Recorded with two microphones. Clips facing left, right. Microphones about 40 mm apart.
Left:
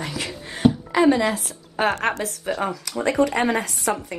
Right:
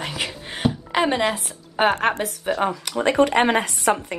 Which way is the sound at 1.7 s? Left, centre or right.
Right.